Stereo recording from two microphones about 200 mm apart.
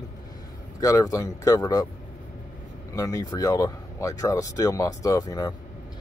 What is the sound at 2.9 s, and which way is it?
Speech, 15° left (ahead or behind).